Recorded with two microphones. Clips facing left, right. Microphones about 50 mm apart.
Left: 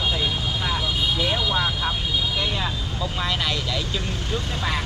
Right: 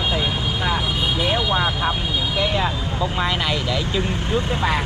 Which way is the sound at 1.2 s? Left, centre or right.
Centre.